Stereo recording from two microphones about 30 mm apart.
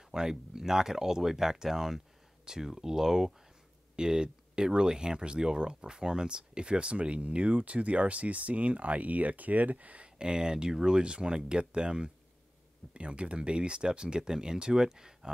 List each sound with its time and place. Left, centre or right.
0.1 s speech: centre
3.9 s speech: right
10.0 s speech: right